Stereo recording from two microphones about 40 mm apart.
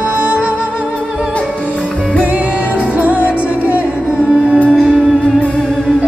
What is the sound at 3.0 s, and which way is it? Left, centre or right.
Music, right.